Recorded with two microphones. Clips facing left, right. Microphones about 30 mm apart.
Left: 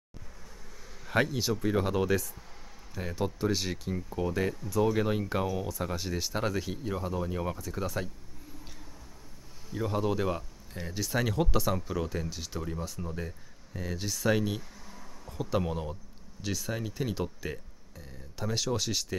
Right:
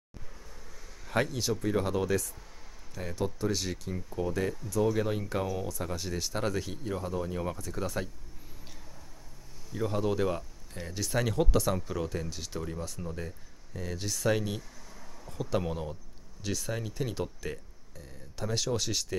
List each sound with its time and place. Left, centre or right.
1.0 s speech: centre
9.7 s speech: centre